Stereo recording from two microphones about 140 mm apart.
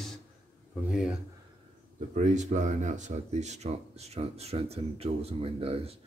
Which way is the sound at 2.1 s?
55° right (ahead or behind).